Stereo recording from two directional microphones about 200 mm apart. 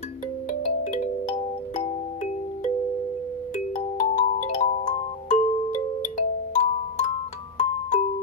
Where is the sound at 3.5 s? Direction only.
40° left (ahead or behind).